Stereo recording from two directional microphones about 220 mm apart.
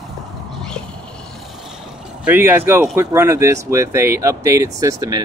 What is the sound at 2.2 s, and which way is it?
Speech, 10° right (ahead or behind).